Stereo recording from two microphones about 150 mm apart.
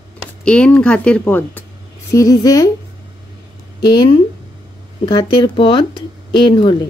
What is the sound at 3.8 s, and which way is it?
Speech, 30° left (ahead or behind).